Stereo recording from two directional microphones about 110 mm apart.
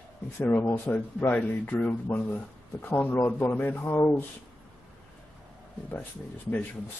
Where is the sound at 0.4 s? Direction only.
20° left (ahead or behind).